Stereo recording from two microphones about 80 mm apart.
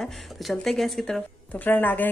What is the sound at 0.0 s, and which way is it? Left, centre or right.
Speech, centre.